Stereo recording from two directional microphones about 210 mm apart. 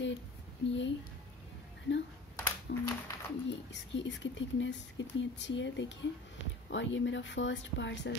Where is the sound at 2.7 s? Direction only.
50° left (ahead or behind).